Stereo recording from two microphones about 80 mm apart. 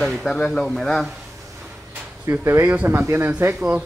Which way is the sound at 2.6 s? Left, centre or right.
Centre.